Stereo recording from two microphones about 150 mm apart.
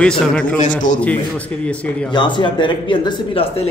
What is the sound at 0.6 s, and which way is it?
Speech, 55° left (ahead or behind).